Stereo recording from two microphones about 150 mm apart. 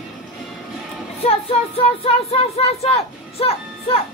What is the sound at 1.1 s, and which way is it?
Speech, 40° left (ahead or behind).